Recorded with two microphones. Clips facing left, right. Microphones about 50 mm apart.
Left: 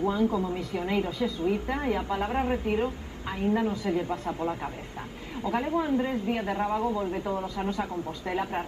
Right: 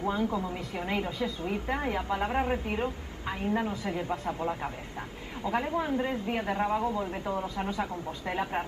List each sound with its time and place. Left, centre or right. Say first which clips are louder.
0.1 s a woman's voice: left 4 dB; centre
3.7 s speech: left 5 dB; centre
5.4 s a woman's voice: left 2 dB; centre